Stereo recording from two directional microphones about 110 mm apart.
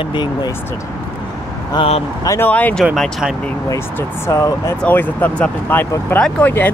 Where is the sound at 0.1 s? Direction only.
45° left (ahead or behind).